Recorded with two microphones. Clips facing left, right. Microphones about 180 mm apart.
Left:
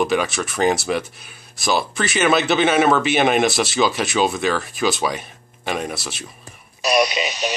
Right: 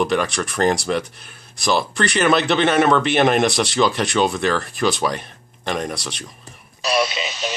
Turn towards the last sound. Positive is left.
turn(degrees=15)  # may be behind; listen again after turning